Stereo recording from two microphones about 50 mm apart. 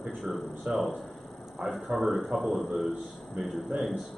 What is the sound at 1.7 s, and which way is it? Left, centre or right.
Speech, centre.